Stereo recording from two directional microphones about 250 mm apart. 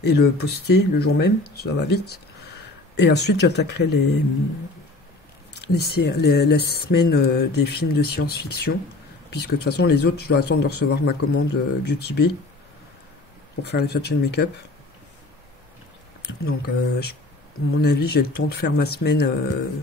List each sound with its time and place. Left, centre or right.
0.0 s speech: left
5.5 s speech: left
13.7 s speech: left
16.2 s speech: left